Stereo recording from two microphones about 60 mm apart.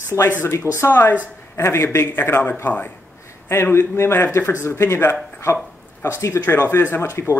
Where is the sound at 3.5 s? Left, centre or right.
Left.